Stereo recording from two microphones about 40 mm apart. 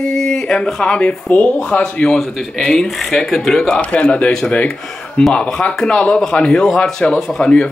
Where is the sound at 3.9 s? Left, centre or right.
Left.